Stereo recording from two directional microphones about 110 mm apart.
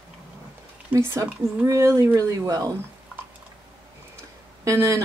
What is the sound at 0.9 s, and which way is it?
Speech, 25° right (ahead or behind).